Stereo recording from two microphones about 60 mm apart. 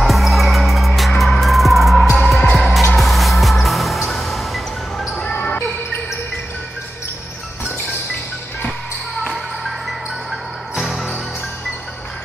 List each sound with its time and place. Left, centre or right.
0.0 s music: centre
5.2 s basketball bounce: left
9.3 s music: centre